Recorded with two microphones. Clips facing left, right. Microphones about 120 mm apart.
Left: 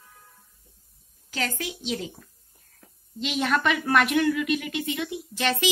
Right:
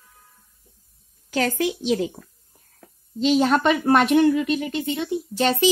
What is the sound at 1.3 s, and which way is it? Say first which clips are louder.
Speech: right 9 dB; 45° right (ahead or behind).